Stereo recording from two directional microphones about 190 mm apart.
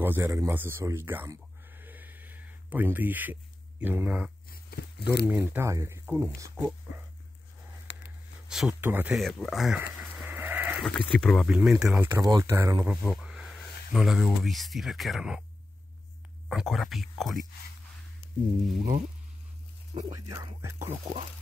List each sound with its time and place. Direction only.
0.0 s speech: 10° right (ahead or behind)
4.5 s a sound: 55° left (ahead or behind)
5.3 s speech: 15° right (ahead or behind)
7.9 s a sound: 70° left (ahead or behind)
8.5 s speech: 5° right (ahead or behind)
10.2 s sheep: 10° right (ahead or behind)
10.9 s speech: centre (ahead or behind); by 13.0 s 15° right (ahead or behind)
13.1 s speech: 5° right (ahead or behind)
16.4 s speech: centre (ahead or behind)
20.1 s speech: 20° right (ahead or behind)